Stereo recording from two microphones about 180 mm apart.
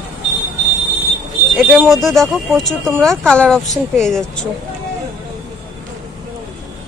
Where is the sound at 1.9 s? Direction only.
Centre (ahead or behind).